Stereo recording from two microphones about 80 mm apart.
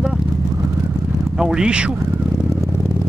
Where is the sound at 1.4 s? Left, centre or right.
Centre.